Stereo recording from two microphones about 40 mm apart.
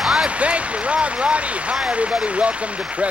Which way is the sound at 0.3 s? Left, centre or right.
Right.